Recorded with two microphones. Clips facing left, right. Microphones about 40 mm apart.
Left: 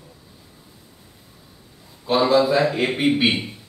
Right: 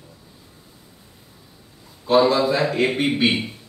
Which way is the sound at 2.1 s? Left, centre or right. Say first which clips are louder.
Even; centre.